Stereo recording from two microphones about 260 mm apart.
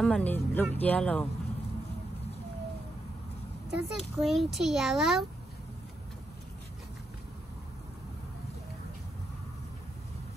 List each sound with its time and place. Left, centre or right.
0.0 s a child's voice: centre
3.7 s a child's voice: centre